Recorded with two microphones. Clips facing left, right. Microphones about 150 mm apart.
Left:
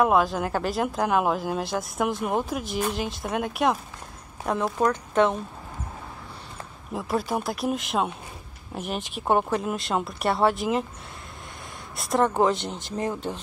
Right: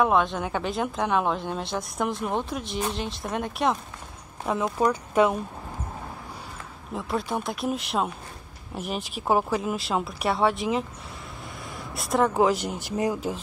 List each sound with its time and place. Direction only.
0.0 s speech: 5° left (ahead or behind)
6.9 s speech: centre (ahead or behind)
11.9 s speech: centre (ahead or behind)